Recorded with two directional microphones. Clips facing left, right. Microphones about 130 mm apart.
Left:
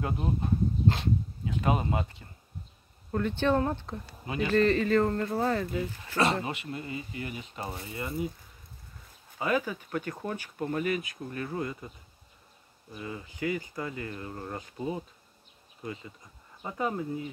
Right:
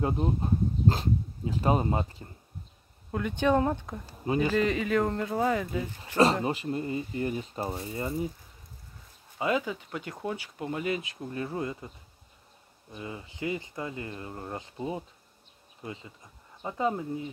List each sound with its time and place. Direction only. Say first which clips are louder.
0.0 s speech: right 3 dB; 30° right (ahead or behind)
3.1 s speech: right 1 dB; 10° right (ahead or behind)
6.4 s speech: right 6 dB; 35° right (ahead or behind)
7.7 s speech: right 4 dB; 25° right (ahead or behind)
9.4 s speech: right 1 dB; 20° right (ahead or behind)
12.9 s speech: even; 25° right (ahead or behind)